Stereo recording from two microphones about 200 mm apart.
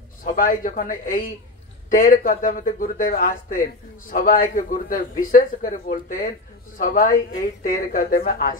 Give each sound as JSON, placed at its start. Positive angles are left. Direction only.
{"t": 0.2, "sound": "a man's voice", "side_deg": 45}